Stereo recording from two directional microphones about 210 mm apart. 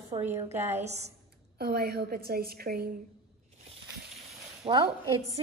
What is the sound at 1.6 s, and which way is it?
A woman's voice, 45° right (ahead or behind).